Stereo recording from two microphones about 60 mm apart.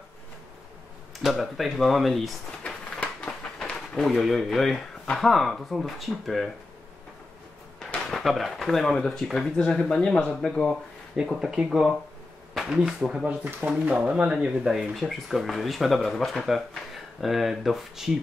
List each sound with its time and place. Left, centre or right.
1.2 s speech: centre
2.6 s a sound: centre
3.9 s speech: centre
8.1 s speech: centre
11.1 s speech: centre
14.6 s speech: centre